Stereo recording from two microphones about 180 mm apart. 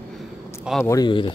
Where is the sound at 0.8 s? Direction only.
20° left (ahead or behind).